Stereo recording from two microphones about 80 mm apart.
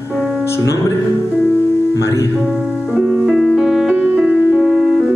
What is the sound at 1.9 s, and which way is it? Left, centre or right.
Speech, left.